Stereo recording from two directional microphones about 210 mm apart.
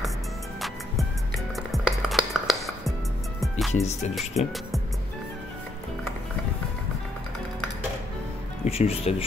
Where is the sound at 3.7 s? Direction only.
30° left (ahead or behind).